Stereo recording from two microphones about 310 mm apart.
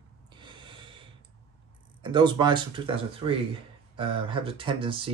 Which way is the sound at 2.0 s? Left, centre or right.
Centre.